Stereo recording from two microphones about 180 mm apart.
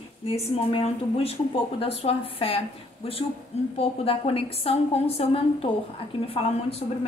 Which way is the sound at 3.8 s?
30° left (ahead or behind).